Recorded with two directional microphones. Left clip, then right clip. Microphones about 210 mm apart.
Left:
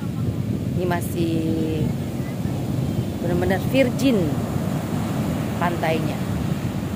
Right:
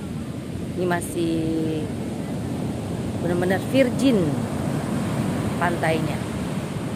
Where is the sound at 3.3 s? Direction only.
5° left (ahead or behind).